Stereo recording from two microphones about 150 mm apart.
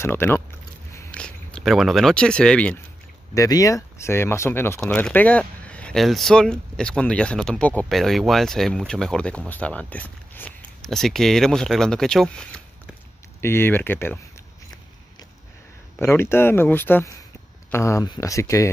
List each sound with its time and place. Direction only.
0.0 s speech: 15° left (ahead or behind)
3.3 s speech: 25° left (ahead or behind)
4.7 s speech: 5° left (ahead or behind)
13.4 s speech: 15° left (ahead or behind)
16.0 s speech: 15° left (ahead or behind)